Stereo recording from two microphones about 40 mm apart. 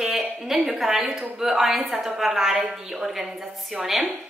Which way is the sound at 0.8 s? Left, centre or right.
Centre.